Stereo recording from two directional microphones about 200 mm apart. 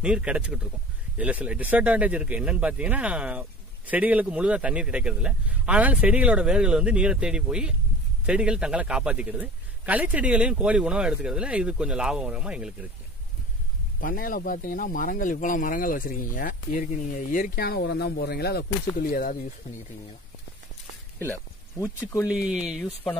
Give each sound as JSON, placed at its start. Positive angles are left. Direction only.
{"t": 0.0, "sound": "speech", "side_deg": -5}
{"t": 13.9, "sound": "speech", "side_deg": 45}
{"t": 21.2, "sound": "speech", "side_deg": 10}
{"t": 22.3, "sound": "speech", "side_deg": -5}